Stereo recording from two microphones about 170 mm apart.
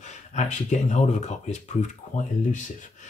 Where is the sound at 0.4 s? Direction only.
45° left (ahead or behind).